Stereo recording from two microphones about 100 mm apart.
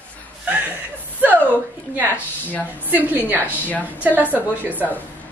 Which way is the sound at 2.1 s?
15° left (ahead or behind).